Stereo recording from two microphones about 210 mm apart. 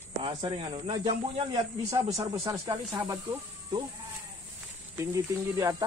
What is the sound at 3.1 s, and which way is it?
Speech, 20° right (ahead or behind).